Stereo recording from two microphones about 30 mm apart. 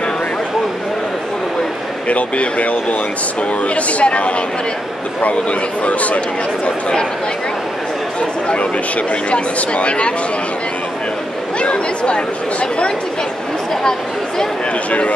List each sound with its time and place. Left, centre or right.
2.0 s speech: left
8.5 s speech: left
11.6 s speech: left
14.9 s speech: left